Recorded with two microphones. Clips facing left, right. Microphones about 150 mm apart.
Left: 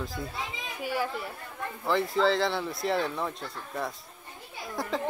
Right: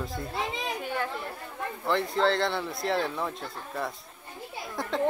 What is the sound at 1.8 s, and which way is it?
Speech, centre (ahead or behind).